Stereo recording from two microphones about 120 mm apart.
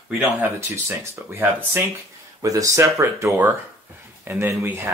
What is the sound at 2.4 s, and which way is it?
Speech, 25° right (ahead or behind).